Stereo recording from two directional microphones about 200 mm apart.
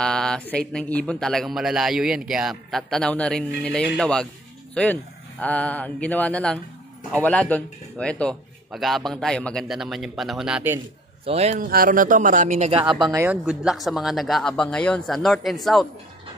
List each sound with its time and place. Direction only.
0.0 s speech: 5° left (ahead or behind)
5.4 s mantra: 5° left (ahead or behind)
7.2 s speech: 5° left (ahead or behind)
11.2 s speech: 30° right (ahead or behind)
13.0 s speech: 15° right (ahead or behind)